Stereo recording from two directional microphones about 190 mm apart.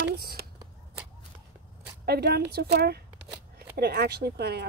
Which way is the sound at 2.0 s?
55° right (ahead or behind).